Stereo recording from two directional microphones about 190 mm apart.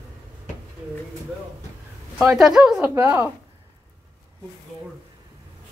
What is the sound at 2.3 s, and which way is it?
Speech, 5° right (ahead or behind).